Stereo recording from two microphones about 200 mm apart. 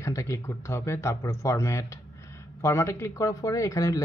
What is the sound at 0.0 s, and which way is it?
Speech, 15° left (ahead or behind).